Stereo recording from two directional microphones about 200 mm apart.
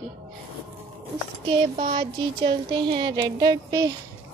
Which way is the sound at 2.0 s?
25° right (ahead or behind).